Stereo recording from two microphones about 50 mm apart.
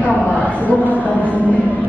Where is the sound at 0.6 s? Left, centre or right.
Right.